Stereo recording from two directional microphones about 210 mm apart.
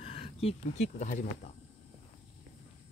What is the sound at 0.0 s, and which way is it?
Speech, 30° left (ahead or behind).